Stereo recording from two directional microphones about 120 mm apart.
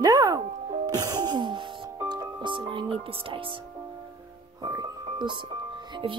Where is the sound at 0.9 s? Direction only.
30° right (ahead or behind).